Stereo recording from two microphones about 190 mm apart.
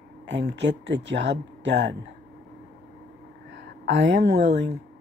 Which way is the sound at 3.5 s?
75° right (ahead or behind).